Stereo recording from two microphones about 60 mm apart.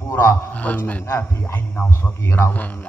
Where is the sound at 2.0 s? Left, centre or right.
Left.